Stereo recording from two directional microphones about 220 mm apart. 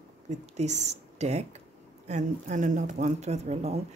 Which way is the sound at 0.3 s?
30° right (ahead or behind).